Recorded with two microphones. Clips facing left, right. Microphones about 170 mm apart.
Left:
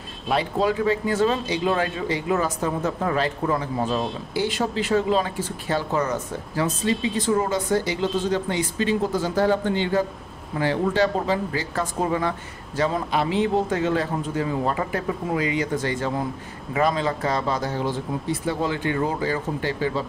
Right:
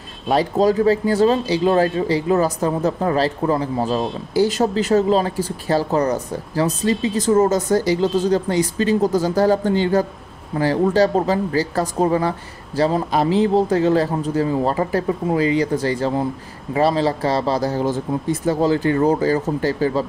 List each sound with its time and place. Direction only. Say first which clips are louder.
0.3 s speech: right 6 dB; 40° right (ahead or behind)